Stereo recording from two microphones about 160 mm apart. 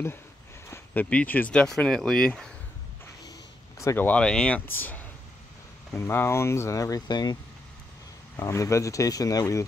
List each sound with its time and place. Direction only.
0.7 s speech: 10° left (ahead or behind)
3.3 s speech: 20° left (ahead or behind)
8.4 s speech: 20° left (ahead or behind)